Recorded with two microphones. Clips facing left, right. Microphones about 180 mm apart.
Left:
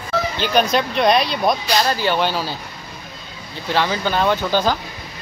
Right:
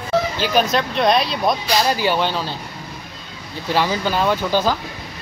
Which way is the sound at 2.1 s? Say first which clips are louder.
Left 1 dB; 5° left (ahead or behind).